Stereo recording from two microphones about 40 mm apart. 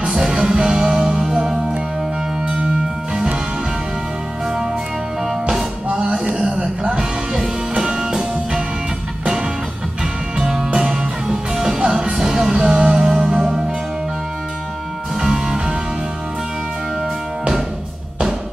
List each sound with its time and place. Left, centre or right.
0.0 s music: centre
2.4 s music: right
5.2 s music: centre
5.9 s music: right
6.3 s a sound: right
6.9 s music: centre
10.3 s music: centre
15.1 s music: centre